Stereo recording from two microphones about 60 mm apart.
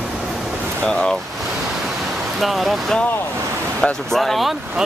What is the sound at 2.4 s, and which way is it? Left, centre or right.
Speech, centre.